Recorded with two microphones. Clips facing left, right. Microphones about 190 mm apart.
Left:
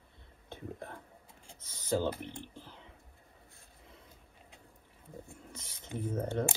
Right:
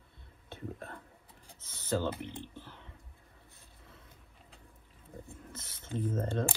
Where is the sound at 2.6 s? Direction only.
15° left (ahead or behind).